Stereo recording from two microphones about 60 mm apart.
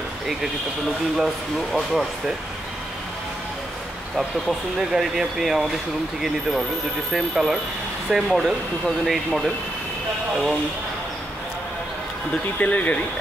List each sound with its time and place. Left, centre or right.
1.1 s speech: centre
4.2 s speech: centre
7.1 s speech: centre
12.5 s speech: left